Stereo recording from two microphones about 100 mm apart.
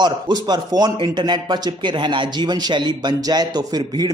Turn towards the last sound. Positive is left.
turn(degrees=-45)  # may be behind; listen again after turning